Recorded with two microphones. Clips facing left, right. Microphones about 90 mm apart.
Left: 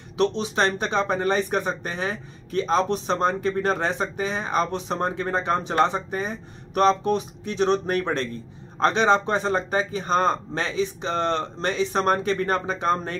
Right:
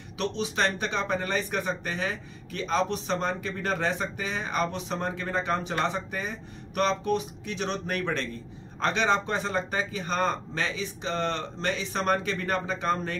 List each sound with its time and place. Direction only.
0.2 s speech: 35° left (ahead or behind)